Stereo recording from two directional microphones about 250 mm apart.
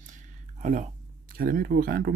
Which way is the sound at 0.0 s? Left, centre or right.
Right.